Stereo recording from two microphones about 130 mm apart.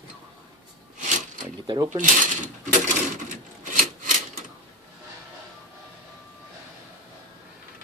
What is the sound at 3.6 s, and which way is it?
Wood, 90° right.